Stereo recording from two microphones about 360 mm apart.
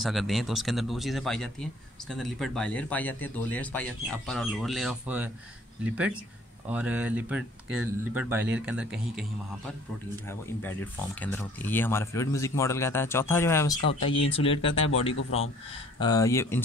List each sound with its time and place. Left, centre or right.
0.0 s speech: centre
10.2 s speech: centre
15.1 s speech: left
16.0 s speech: centre